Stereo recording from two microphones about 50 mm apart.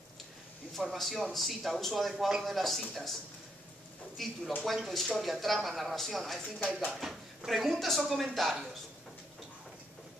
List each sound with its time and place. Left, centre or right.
0.9 s speech: centre
4.2 s speech: centre
6.7 s speech: centre
7.0 s speech: centre